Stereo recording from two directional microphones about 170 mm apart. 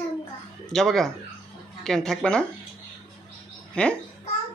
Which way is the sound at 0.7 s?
Centre (ahead or behind).